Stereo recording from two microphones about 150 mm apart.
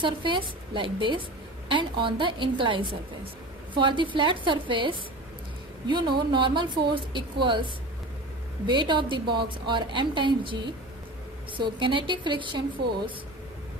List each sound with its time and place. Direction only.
0.0 s a woman's voice: 35° right (ahead or behind)